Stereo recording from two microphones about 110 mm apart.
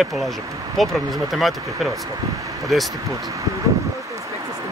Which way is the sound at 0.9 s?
Centre (ahead or behind).